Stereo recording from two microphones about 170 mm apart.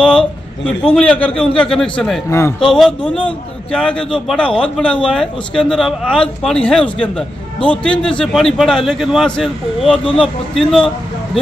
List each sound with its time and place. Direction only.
0.0 s speech: 5° left (ahead or behind)
2.2 s speech: 15° left (ahead or behind)
2.6 s speech: centre (ahead or behind)